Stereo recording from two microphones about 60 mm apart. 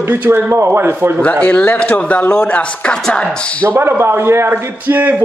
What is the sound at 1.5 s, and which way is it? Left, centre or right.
Speech, left.